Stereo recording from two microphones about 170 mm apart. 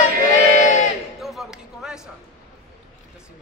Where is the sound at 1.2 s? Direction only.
Centre (ahead or behind).